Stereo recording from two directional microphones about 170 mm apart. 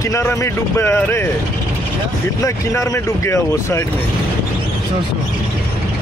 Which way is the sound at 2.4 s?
15° left (ahead or behind).